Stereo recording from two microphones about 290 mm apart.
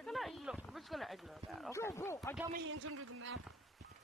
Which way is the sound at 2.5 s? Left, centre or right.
Right.